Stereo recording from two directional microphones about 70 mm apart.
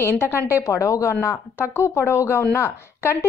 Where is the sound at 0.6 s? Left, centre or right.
Left.